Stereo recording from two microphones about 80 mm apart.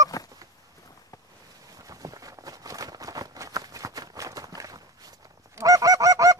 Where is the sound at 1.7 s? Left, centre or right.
Right.